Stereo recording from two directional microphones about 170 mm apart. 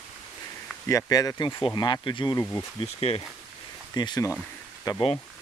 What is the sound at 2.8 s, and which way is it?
Speech, 35° left (ahead or behind).